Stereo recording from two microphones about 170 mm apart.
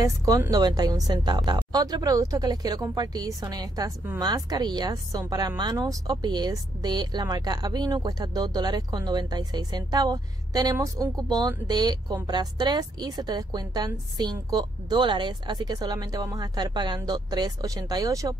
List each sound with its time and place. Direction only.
0.0 s speech: 20° right (ahead or behind)